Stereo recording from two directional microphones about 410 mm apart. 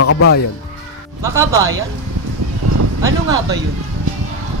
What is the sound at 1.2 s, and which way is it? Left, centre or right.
Speech, centre.